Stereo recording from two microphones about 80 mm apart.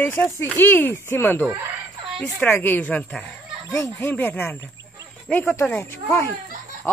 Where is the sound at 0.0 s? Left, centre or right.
Left.